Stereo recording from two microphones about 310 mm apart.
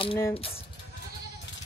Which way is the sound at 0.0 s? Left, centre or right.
Centre.